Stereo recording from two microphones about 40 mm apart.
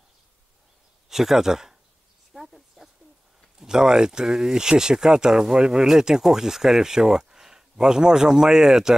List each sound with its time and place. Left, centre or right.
1.0 s speech: centre
2.4 s a sound: centre
3.5 s speech: centre